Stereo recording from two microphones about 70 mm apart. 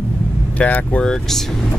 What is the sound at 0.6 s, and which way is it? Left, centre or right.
Speech, centre.